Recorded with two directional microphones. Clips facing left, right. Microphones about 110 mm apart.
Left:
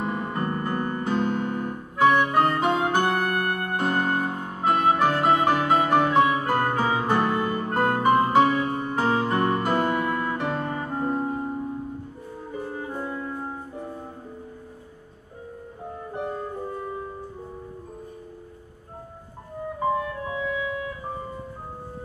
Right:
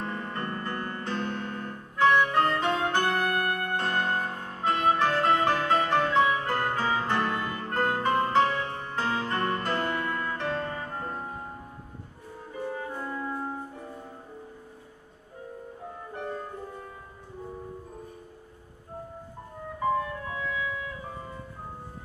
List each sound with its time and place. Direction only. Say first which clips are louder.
0.0 s music: left 6 dB; 15° left (ahead or behind)
12.7 s music: left 3 dB; 20° left (ahead or behind)
20.2 s music: left 5 dB; 15° left (ahead or behind)